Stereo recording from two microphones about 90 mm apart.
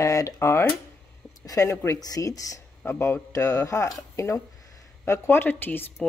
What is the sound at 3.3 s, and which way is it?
A woman's voice, 35° left (ahead or behind).